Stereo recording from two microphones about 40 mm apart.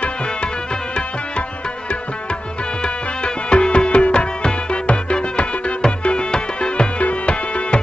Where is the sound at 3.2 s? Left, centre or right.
Left.